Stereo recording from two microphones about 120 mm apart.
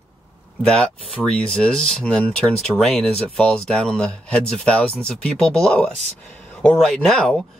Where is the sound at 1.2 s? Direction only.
5° left (ahead or behind).